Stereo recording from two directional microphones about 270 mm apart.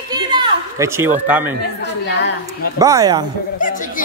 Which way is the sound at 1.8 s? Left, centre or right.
Left.